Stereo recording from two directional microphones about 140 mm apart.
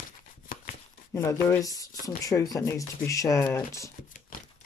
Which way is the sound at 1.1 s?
20° left (ahead or behind).